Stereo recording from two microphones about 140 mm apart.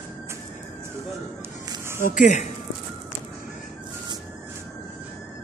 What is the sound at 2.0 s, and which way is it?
Speech, 70° left (ahead or behind).